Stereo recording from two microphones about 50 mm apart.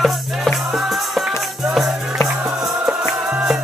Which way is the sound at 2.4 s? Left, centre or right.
Centre.